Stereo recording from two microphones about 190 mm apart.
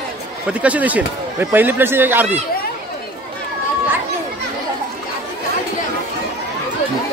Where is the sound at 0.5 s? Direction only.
5° right (ahead or behind).